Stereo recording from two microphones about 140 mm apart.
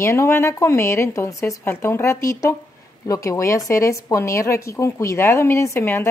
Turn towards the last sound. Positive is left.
turn(degrees=20)  # may be behind; listen again after turning